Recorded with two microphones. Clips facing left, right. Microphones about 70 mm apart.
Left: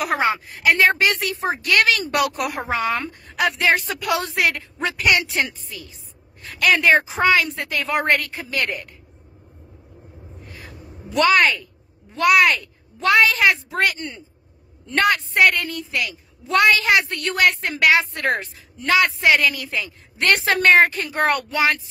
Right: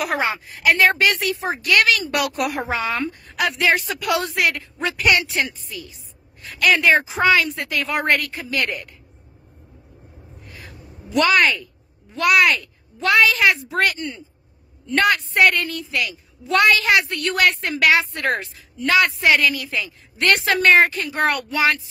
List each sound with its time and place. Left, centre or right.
0.0 s speech: left
5.3 s a woman's voice: left
11.1 s a woman's voice: left
13.7 s speech: centre
13.9 s a woman's voice: left
15.0 s a woman's voice: left